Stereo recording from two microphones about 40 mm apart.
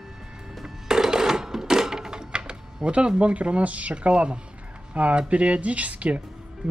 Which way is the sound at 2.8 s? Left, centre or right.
Right.